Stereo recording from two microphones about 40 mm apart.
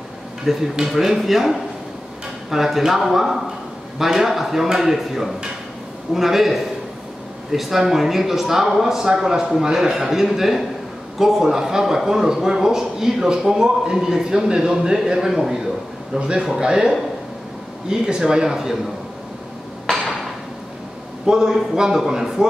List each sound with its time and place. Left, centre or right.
0.5 s a man's voice: centre
16.2 s a man's voice: right
21.3 s a man's voice: centre